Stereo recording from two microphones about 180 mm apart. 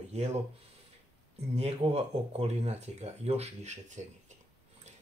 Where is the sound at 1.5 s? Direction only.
35° right (ahead or behind).